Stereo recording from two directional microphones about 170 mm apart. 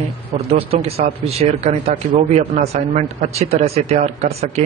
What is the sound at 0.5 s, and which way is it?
A man's voice, 35° right (ahead or behind).